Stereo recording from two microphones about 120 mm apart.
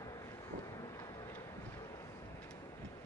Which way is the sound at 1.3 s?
25° left (ahead or behind).